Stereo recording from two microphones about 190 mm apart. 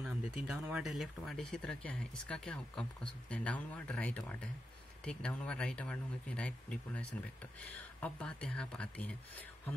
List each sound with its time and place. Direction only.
0.0 s speech: 5° right (ahead or behind)